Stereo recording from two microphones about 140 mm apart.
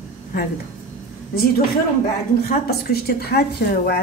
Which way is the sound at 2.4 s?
90° left.